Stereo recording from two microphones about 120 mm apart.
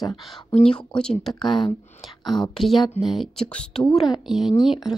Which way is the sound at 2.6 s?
Centre (ahead or behind).